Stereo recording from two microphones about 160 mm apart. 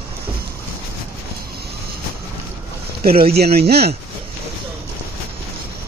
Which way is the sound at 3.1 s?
70° right (ahead or behind).